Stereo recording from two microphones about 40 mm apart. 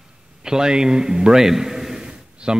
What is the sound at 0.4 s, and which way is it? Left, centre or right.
A man's voice, centre.